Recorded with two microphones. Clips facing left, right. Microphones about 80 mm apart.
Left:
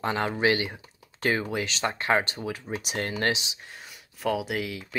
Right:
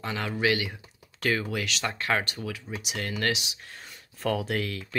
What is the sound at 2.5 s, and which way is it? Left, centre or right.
Speech, left.